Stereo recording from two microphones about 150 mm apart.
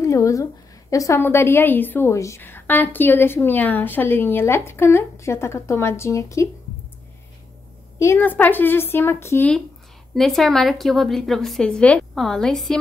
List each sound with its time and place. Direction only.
0.0 s a woman's voice: 20° left (ahead or behind)
8.0 s a woman's voice: 15° left (ahead or behind)
10.1 s a woman's voice: centre (ahead or behind)